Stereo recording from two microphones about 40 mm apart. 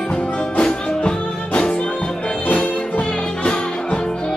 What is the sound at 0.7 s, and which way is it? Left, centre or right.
Music, left.